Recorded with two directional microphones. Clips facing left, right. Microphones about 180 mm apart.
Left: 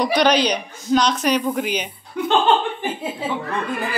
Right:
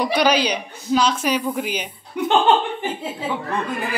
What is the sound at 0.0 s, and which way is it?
A woman's voice, 10° right (ahead or behind).